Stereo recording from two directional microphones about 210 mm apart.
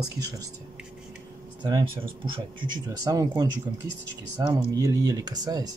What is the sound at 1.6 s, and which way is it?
Speech, 15° right (ahead or behind).